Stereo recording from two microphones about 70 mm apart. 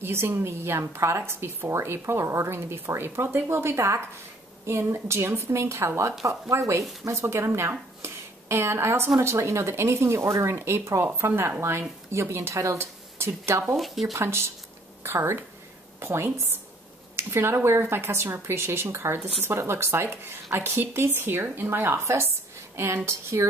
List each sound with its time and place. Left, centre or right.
0.0 s speech: right
8.0 s a sound: right
9.2 s speech: right
13.7 s speech: centre
14.1 s speech: right